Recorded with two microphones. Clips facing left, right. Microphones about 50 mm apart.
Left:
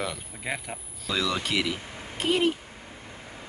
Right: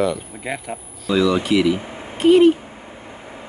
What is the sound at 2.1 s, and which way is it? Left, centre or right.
Speech, centre.